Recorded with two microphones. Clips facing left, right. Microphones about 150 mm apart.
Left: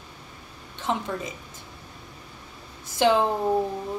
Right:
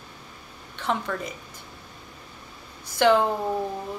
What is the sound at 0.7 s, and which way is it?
Speech, 20° left (ahead or behind).